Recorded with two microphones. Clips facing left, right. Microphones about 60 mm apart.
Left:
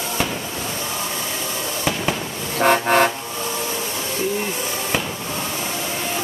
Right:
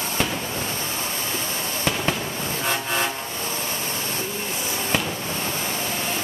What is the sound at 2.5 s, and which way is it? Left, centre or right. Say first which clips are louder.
Vehicle: left 11 dB; left.